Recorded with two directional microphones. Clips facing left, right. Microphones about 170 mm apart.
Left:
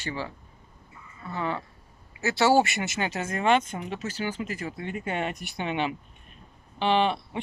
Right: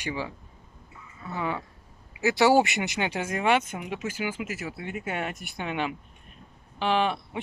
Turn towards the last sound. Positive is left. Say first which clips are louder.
# left 2 dB
turn(degrees=-5)  # may be behind; listen again after turning